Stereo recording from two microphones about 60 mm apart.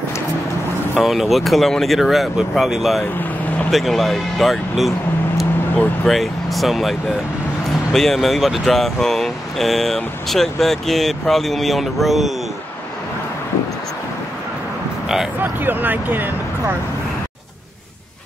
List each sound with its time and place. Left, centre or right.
0.9 s speech: centre
6.0 s speech: centre
15.4 s speech: right